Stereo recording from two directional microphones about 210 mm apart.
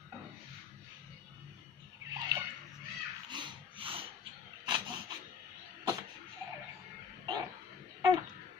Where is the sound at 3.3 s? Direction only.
20° right (ahead or behind).